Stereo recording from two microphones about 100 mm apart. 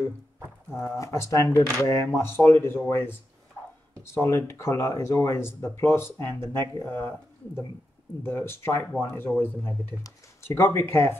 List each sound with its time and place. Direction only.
0.7 s speech: 25° left (ahead or behind)